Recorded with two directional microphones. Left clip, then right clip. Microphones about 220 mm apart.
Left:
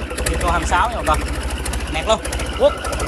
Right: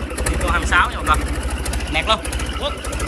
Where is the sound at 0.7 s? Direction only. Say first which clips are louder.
Right 2 dB; 25° left (ahead or behind).